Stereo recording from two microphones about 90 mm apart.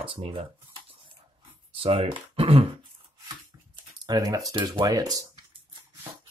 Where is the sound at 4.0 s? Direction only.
45° right (ahead or behind).